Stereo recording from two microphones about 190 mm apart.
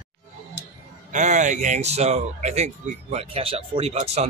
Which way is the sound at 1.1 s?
40° right (ahead or behind).